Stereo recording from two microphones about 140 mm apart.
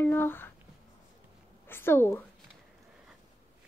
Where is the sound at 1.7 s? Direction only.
15° left (ahead or behind).